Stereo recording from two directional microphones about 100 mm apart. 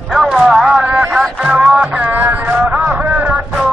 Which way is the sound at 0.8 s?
15° right (ahead or behind).